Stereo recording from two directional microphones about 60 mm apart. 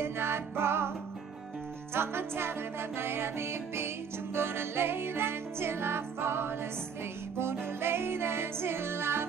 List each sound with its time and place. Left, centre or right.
0.0 s music: right
2.0 s music: right